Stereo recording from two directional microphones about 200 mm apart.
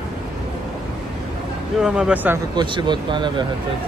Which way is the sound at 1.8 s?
5° right (ahead or behind).